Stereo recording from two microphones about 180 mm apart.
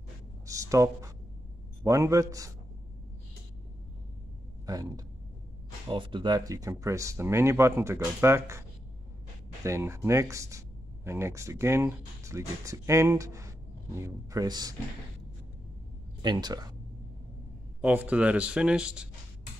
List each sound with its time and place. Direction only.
0.5 s speech: 20° right (ahead or behind)
4.6 s speech: 20° right (ahead or behind)
16.2 s speech: 25° right (ahead or behind)
17.8 s speech: 10° right (ahead or behind)